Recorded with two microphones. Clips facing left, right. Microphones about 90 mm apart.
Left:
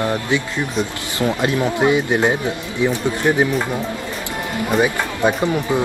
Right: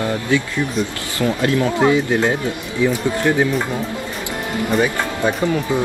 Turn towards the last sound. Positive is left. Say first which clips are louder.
# even
turn(degrees=15)  # may be behind; listen again after turning